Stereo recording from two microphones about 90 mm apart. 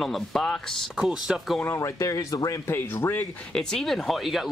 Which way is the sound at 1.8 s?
35° left (ahead or behind).